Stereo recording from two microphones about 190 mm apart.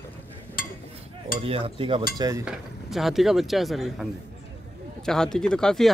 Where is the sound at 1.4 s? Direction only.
30° right (ahead or behind).